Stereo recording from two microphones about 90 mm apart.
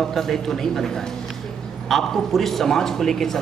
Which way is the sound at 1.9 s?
Centre (ahead or behind).